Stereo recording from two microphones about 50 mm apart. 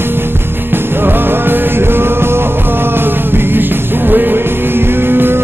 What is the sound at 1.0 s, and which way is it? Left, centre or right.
Music, right.